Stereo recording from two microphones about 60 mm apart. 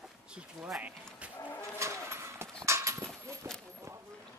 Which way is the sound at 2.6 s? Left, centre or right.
Right.